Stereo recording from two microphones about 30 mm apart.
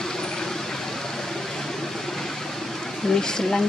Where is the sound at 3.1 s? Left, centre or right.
Left.